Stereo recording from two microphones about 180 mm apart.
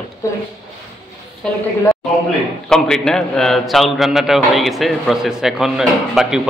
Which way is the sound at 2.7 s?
5° left (ahead or behind).